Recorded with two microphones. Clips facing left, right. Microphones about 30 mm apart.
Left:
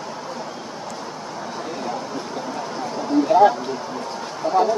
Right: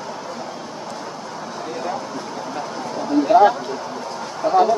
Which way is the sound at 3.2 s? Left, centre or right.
Centre.